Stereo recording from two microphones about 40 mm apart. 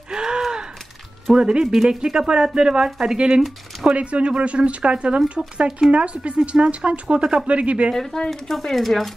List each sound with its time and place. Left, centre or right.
0.1 s a sound: centre
1.3 s speech: right
3.8 s speech: right
7.4 s speech: right
7.9 s speech: centre